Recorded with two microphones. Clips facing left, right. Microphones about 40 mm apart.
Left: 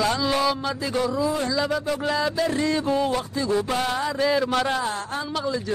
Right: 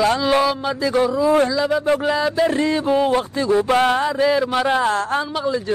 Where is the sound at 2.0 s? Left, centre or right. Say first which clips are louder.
Right 5 dB; right.